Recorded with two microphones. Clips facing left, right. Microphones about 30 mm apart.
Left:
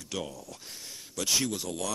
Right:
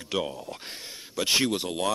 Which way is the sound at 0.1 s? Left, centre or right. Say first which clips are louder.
Right 7 dB; right.